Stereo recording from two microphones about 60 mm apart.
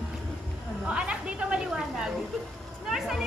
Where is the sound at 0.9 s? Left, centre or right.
Centre.